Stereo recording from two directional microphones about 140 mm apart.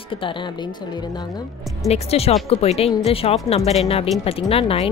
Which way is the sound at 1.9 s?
45° left (ahead or behind).